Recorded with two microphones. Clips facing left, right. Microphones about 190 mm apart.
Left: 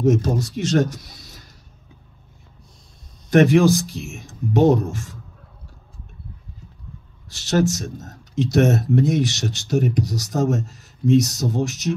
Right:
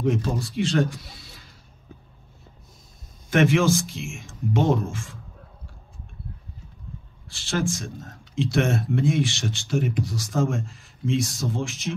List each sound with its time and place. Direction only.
0.0 s speech: 45° left (ahead or behind)
3.3 s speech: 40° left (ahead or behind)
7.2 s speech: 40° left (ahead or behind)